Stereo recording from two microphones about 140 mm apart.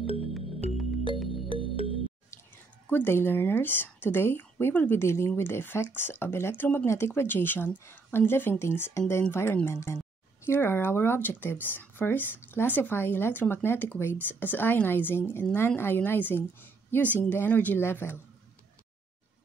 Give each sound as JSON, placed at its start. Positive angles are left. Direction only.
{"t": 0.0, "sound": "music", "side_deg": 45}
{"t": 1.5, "sound": "music", "side_deg": 40}
{"t": 2.9, "sound": "speech", "side_deg": 15}